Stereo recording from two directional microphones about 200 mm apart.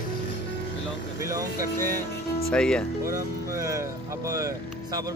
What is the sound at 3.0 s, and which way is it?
Speech, 15° right (ahead or behind).